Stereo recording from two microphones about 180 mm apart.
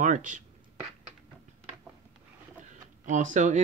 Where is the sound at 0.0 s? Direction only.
45° right (ahead or behind).